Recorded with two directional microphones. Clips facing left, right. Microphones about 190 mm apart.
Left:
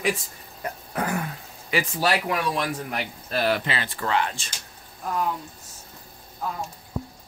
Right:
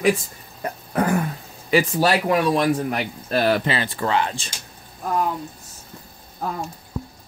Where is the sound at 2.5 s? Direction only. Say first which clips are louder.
Right 8 dB; 45° right (ahead or behind); by 4.4 s 30° right (ahead or behind).